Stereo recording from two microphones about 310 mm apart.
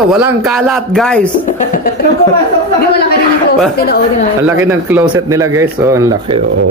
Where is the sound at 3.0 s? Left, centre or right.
Left.